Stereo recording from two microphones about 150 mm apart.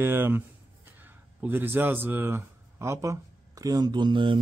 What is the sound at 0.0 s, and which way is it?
Speech, 15° right (ahead or behind).